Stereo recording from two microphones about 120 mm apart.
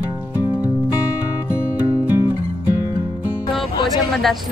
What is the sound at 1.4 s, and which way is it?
Music, 20° left (ahead or behind).